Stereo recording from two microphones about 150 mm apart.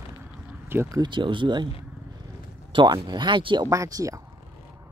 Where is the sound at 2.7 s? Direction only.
30° right (ahead or behind).